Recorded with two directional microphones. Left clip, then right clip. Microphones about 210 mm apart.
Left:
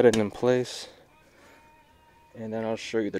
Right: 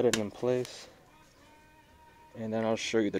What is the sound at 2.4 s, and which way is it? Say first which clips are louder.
Speech: even; 5° left (ahead or behind).